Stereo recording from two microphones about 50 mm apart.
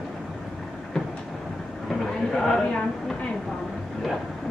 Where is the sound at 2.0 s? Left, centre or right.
Centre.